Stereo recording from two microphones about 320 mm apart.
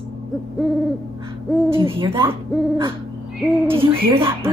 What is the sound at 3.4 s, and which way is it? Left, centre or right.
Speech, centre.